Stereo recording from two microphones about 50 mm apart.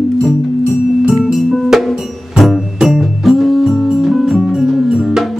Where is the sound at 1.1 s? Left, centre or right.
Centre.